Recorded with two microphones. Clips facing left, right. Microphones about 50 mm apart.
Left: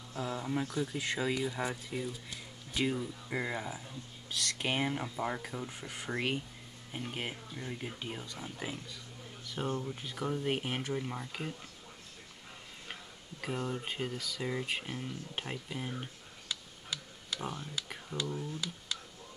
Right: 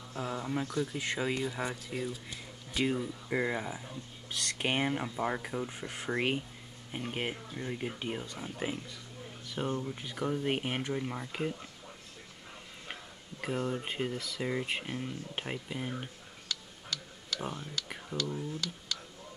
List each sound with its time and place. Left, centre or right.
0.1 s speech: centre
0.4 s speech: centre
1.9 s speech: centre
4.3 s speech: right; by 6.1 s centre
6.1 s speech: centre
9.6 s speech: centre
13.4 s speech: centre
16.4 s tick-tock: centre
17.4 s speech: centre
18.9 s a sound: centre